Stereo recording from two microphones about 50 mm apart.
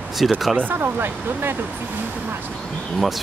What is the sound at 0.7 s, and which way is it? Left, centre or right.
Speech, right.